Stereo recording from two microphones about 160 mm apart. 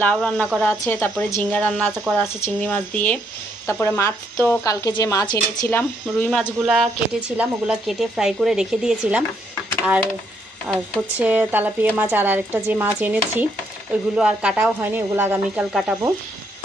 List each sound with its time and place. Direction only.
0.0 s speech: 10° left (ahead or behind); by 5.7 s 25° left (ahead or behind)
5.7 s speech: 10° left (ahead or behind)
6.6 s speech: 5° right (ahead or behind)
10.7 s speech: 10° right (ahead or behind)
15.7 s speech: centre (ahead or behind)